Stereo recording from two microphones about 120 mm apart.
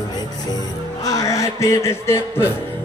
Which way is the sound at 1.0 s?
30° left (ahead or behind).